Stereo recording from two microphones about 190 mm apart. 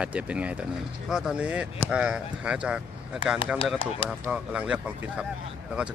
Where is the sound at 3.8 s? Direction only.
30° left (ahead or behind).